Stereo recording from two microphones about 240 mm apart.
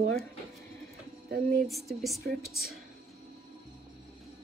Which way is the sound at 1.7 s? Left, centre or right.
Centre.